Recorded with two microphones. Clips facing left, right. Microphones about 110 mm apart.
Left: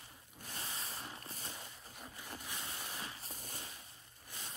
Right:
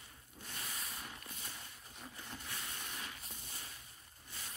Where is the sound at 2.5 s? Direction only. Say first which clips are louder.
Left 1 dB; 30° left (ahead or behind).